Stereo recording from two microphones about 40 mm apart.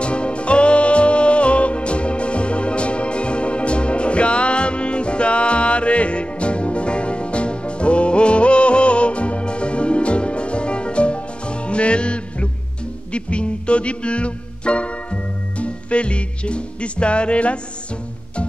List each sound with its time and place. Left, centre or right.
0.0 s music: left